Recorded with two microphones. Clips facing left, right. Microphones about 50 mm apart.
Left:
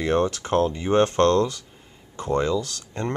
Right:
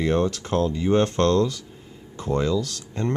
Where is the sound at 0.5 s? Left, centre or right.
Left.